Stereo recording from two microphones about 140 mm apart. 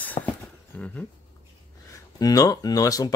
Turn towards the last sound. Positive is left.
turn(degrees=25)  # may be behind; listen again after turning